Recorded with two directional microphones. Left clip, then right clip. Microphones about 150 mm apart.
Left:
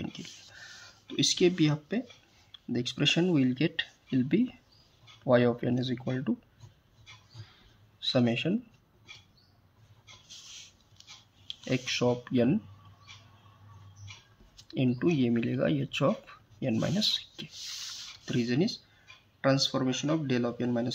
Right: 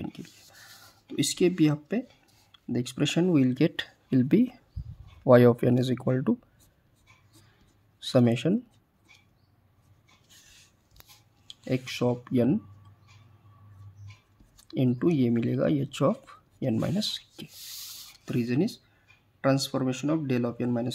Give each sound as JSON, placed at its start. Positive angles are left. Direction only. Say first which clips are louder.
{"t": 0.0, "sound": "a sound", "louder": "right 1 dB", "side_deg": -30}
{"t": 1.0, "sound": "speech", "louder": "even", "side_deg": -40}
{"t": 6.0, "sound": "speech", "louder": "right 6 dB", "side_deg": -45}
{"t": 8.0, "sound": "speech", "louder": "right 3 dB", "side_deg": -45}
{"t": 11.4, "sound": "speech", "louder": "even", "side_deg": -30}
{"t": 14.7, "sound": "speech", "louder": "right 2 dB", "side_deg": -35}
{"t": 16.3, "sound": "a sound", "louder": "right 2 dB", "side_deg": -35}
{"t": 16.7, "sound": "speech", "louder": "left 4 dB", "side_deg": -20}